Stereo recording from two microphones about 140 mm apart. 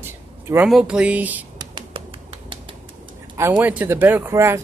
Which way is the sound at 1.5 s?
35° right (ahead or behind).